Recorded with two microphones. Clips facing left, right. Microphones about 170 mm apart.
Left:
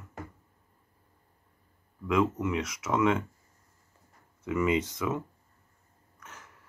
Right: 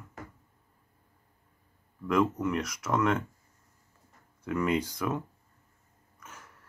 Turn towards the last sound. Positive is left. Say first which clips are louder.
# even
turn(degrees=0)  # may be behind; listen again after turning